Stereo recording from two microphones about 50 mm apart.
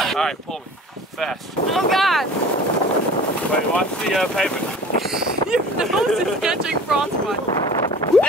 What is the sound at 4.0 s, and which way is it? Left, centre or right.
Speech, centre.